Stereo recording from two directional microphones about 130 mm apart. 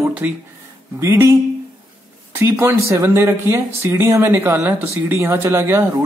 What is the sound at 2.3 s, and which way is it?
A man's voice, 20° right (ahead or behind).